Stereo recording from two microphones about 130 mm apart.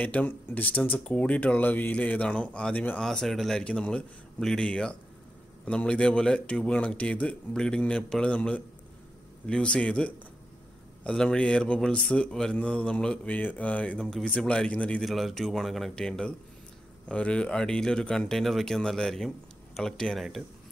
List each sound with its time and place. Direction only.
0.0 s speech: 15° left (ahead or behind)